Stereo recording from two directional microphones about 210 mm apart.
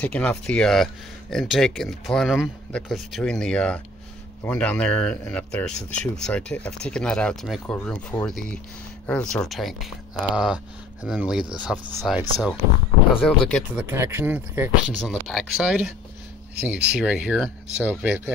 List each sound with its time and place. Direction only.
0.0 s speech: 5° left (ahead or behind)
13.7 s speech: 10° right (ahead or behind)
14.9 s speech: centre (ahead or behind)